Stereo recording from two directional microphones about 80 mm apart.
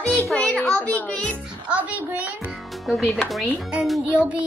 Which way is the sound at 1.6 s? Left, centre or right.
Centre.